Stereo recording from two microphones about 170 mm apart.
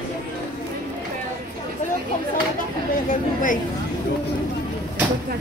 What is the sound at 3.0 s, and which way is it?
Speech, 50° left (ahead or behind).